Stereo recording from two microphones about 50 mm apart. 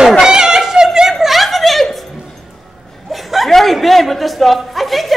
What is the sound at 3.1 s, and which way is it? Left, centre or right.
Speech, centre.